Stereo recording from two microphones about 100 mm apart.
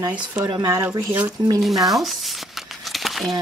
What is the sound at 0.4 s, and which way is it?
Speech, 45° right (ahead or behind).